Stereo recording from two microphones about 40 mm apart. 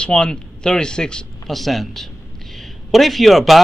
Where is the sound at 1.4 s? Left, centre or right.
Centre.